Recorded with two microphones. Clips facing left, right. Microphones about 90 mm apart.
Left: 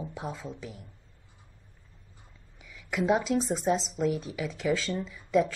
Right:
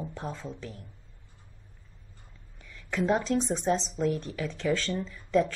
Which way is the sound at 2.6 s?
10° left (ahead or behind).